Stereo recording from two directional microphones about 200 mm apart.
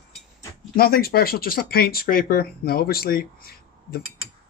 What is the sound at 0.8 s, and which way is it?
Speech, 50° left (ahead or behind).